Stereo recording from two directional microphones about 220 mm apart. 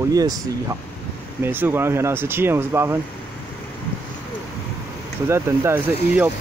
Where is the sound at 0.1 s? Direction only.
15° right (ahead or behind).